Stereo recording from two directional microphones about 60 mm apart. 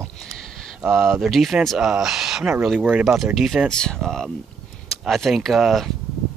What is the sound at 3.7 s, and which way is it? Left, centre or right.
Speech, centre.